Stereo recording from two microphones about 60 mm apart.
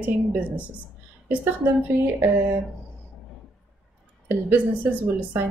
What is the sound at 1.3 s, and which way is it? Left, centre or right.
Speech, right.